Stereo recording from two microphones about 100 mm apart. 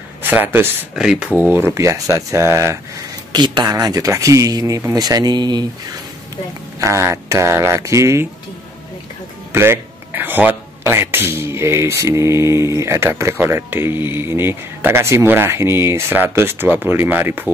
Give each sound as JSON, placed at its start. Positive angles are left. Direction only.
{"t": 0.2, "sound": "speech", "side_deg": -20}
{"t": 0.9, "sound": "speech", "side_deg": -10}
{"t": 3.3, "sound": "speech", "side_deg": -50}
{"t": 6.8, "sound": "speech", "side_deg": -30}
{"t": 9.5, "sound": "speech", "side_deg": -25}